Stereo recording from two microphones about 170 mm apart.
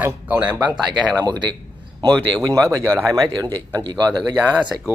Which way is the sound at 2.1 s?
5° left (ahead or behind).